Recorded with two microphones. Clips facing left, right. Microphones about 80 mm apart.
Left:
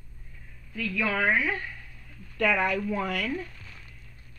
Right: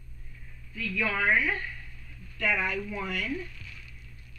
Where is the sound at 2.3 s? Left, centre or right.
Left.